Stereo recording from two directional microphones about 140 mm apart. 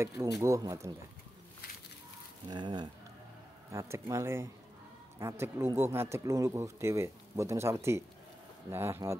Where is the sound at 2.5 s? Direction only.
30° right (ahead or behind).